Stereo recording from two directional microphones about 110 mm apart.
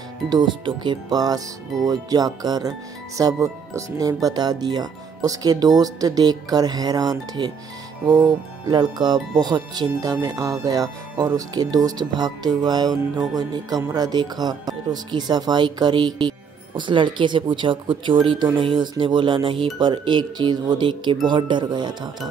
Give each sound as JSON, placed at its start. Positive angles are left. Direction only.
{"t": 0.3, "sound": "speech", "side_deg": -45}